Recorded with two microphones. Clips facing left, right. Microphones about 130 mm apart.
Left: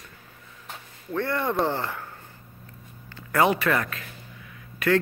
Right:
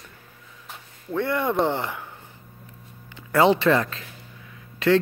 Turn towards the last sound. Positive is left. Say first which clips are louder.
# right 3 dB
turn(degrees=-20)  # may be behind; listen again after turning